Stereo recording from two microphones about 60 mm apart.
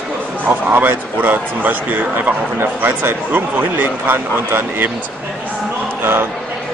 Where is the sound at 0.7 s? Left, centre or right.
Right.